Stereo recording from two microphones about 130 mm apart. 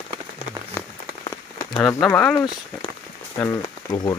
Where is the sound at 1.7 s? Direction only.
20° left (ahead or behind).